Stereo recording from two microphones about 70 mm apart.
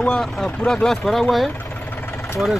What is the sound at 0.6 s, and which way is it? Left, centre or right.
Speech, centre.